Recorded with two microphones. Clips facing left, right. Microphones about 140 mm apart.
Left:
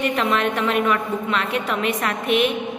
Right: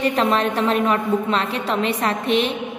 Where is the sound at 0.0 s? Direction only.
35° right (ahead or behind).